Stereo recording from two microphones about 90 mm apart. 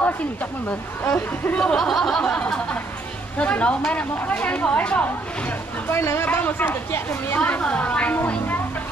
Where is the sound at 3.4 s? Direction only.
15° left (ahead or behind).